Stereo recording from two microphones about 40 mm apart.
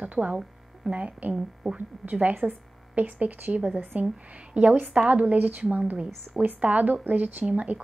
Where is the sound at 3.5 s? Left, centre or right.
Right.